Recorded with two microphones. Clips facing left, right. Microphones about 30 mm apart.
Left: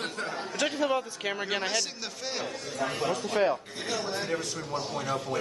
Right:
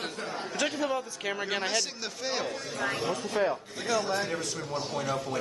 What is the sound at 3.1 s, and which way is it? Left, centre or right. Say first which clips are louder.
Speech: left 2 dB; left.